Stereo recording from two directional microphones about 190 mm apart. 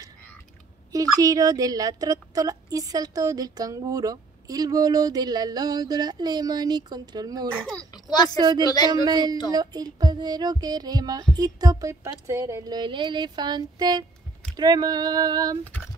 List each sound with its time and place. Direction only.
0.9 s speech: 20° right (ahead or behind)
7.9 s a child's voice: 20° left (ahead or behind)
8.4 s speech: 20° right (ahead or behind)
8.6 s speech: 20° left (ahead or behind)
9.0 s speech: 20° right (ahead or behind)